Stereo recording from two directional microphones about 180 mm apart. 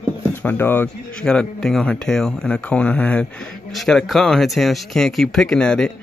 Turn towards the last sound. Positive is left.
turn(degrees=5)  # may be behind; listen again after turning